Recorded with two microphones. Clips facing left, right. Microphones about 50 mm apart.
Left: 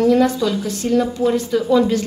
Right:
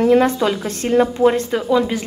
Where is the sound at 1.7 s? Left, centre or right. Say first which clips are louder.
Left 2 dB; centre.